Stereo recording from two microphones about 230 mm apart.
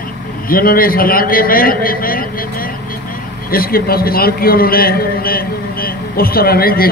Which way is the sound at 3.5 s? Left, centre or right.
Left.